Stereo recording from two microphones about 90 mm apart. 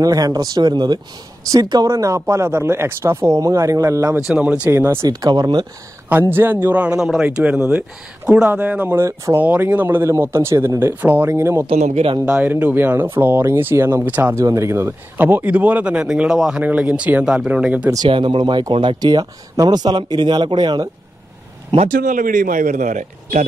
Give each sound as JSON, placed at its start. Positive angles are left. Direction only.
{"t": 0.0, "sound": "speech", "side_deg": -40}
{"t": 1.9, "sound": "speech", "side_deg": -35}
{"t": 4.3, "sound": "speech", "side_deg": -10}
{"t": 4.6, "sound": "speech", "side_deg": -25}
{"t": 5.0, "sound": "speech", "side_deg": -45}
{"t": 6.0, "sound": "speech", "side_deg": -25}
{"t": 11.6, "sound": "a man's voice", "side_deg": -70}
{"t": 12.3, "sound": "speech", "side_deg": -15}
{"t": 14.3, "sound": "speech", "side_deg": -35}
{"t": 18.1, "sound": "speech", "side_deg": -65}
{"t": 18.9, "sound": "speech", "side_deg": -50}